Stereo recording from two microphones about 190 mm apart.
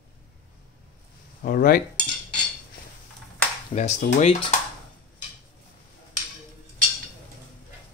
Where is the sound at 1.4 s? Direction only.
50° left (ahead or behind).